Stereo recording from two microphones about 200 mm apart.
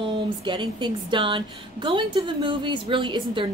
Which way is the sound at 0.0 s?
25° right (ahead or behind).